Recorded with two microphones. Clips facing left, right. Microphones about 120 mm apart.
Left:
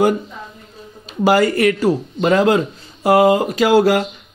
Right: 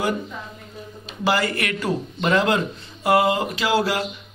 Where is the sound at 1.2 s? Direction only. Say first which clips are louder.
Left 9 dB; 45° left (ahead or behind).